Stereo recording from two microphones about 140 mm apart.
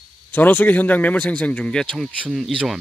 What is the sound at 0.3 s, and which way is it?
Speech, 15° left (ahead or behind).